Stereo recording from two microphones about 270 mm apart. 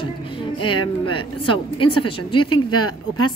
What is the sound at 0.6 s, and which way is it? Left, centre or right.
Speech, centre.